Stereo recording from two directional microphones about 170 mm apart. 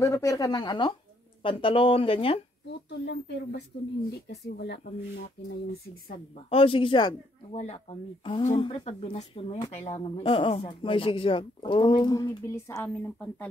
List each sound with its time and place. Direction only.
0.0 s speech: 20° left (ahead or behind)
3.1 s speech: 80° left
6.5 s speech: 30° left (ahead or behind)
7.5 s speech: 40° left (ahead or behind); by 13.5 s 10° left (ahead or behind)